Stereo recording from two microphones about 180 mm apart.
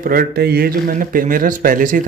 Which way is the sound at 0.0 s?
55° right (ahead or behind).